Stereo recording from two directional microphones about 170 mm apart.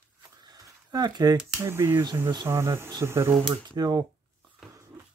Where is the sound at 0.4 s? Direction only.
25° right (ahead or behind).